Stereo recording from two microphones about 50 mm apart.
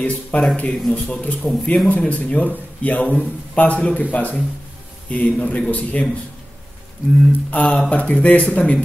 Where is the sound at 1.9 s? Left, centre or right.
Left.